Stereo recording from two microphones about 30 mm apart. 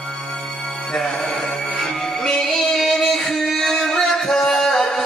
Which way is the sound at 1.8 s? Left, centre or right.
Centre.